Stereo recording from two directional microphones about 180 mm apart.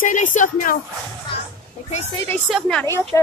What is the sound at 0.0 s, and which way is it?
Speech, 45° left (ahead or behind).